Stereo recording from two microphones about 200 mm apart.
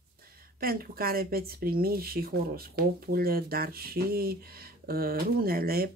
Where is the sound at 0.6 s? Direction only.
45° right (ahead or behind).